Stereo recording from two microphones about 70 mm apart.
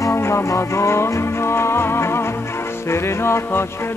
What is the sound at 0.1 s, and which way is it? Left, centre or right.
Music, left.